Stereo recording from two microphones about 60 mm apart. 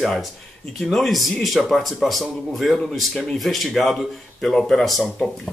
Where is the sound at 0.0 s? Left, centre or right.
Centre.